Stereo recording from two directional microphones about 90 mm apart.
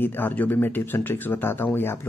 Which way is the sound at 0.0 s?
20° left (ahead or behind).